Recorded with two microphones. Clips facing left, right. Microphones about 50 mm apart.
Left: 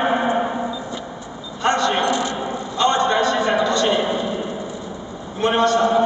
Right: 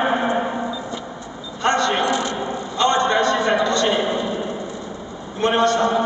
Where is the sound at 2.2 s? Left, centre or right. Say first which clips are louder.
Even; centre.